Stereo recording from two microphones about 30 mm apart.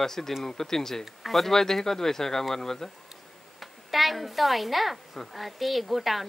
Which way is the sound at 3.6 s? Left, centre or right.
Centre.